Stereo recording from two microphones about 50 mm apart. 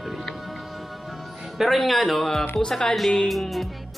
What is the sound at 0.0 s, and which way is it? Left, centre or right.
Music, centre.